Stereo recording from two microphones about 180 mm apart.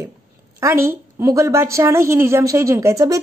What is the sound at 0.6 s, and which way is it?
A woman's voice, 15° right (ahead or behind).